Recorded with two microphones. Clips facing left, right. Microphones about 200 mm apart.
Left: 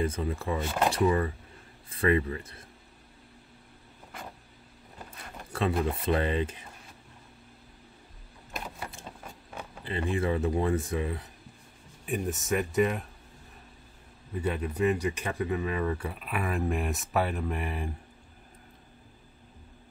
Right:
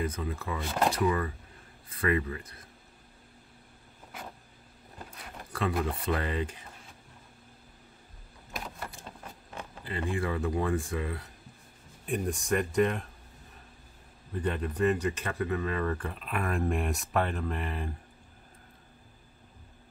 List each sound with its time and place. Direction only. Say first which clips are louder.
0.0 s speech: left 3 dB; 25° left (ahead or behind)
0.7 s speech: right 1 dB; centre (ahead or behind)
0.9 s speech: left 3 dB; 30° left (ahead or behind)
5.5 s speech: left 2 dB; 25° left (ahead or behind)
8.5 s vehicle: left 1 dB; 5° left (ahead or behind)
9.8 s speech: left 3 dB; 20° left (ahead or behind)
12.1 s speech: even; 5° left (ahead or behind)
14.3 s speech: left 1 dB; 10° left (ahead or behind)